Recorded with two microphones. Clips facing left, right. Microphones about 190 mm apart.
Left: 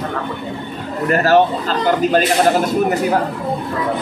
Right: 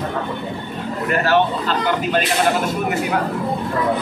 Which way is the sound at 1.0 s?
40° left (ahead or behind).